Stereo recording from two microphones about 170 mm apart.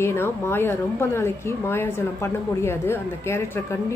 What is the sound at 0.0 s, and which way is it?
A woman's voice, 15° left (ahead or behind).